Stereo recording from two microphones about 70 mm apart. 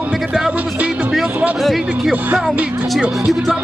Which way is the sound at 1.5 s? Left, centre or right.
Centre.